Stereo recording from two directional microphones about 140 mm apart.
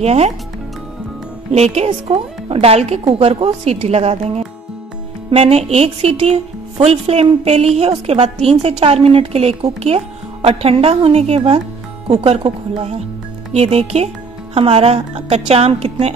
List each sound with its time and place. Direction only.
0.0 s a woman's voice: 50° right (ahead or behind)
1.5 s a woman's voice: 50° right (ahead or behind)